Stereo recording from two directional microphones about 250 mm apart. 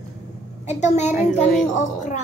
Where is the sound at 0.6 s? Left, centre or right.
Left.